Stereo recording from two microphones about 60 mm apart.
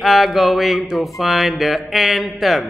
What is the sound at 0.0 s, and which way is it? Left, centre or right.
Mantra, centre.